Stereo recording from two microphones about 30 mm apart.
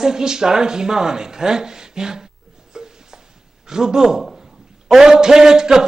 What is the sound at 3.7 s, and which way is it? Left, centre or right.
Speech, right.